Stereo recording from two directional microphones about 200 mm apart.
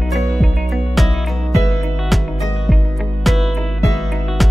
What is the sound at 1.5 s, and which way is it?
Music, centre (ahead or behind).